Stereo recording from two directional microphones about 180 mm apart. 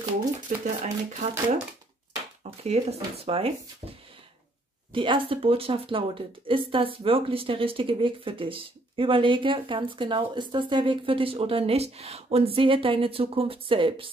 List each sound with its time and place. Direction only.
0.7 s speech: 40° right (ahead or behind)
2.6 s speech: 35° right (ahead or behind)
4.9 s a woman's voice: 30° right (ahead or behind)